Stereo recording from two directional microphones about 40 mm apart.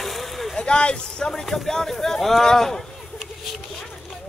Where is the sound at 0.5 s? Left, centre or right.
Left.